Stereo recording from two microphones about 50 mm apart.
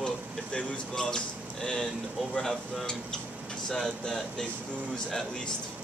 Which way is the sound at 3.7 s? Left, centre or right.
Centre.